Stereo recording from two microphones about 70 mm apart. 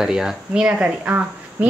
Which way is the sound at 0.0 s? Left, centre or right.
Centre.